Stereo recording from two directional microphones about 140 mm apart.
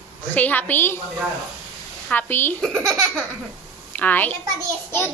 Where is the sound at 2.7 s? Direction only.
5° left (ahead or behind).